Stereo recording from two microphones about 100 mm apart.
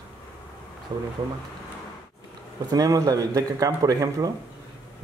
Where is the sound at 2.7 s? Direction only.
40° right (ahead or behind).